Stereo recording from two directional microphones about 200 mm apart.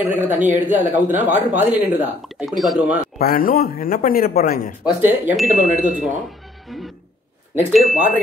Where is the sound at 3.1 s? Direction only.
45° left (ahead or behind).